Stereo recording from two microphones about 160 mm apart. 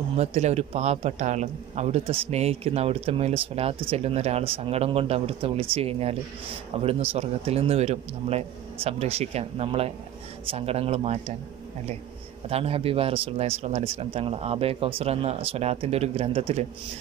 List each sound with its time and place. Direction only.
0.2 s a man's voice: 45° right (ahead or behind)
12.4 s a man's voice: 40° right (ahead or behind)